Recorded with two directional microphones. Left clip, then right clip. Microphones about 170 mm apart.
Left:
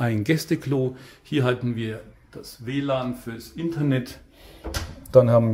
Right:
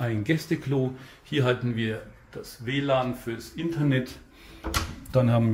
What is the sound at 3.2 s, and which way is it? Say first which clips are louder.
Speech: left 1 dB; 35° left (ahead or behind).